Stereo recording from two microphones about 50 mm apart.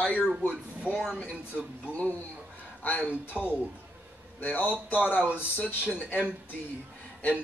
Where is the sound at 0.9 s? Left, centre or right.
Left.